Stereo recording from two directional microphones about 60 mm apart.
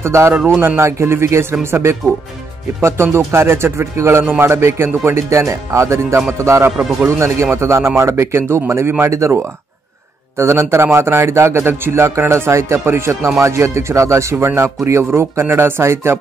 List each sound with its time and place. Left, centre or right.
0.0 s a man's voice: right
0.6 s speech: right
0.8 s a man's voice: right
3.3 s a man's voice: right
4.2 s a man's voice: right